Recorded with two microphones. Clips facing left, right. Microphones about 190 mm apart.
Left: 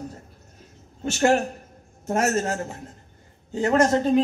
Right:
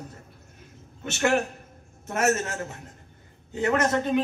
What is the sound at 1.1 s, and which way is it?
Speech, 35° left (ahead or behind).